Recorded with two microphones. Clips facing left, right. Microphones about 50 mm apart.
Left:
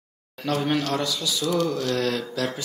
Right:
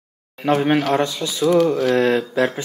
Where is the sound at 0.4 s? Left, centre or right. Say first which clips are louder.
Right 7 dB; right.